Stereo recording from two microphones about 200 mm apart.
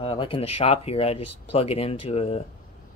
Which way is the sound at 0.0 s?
25° left (ahead or behind).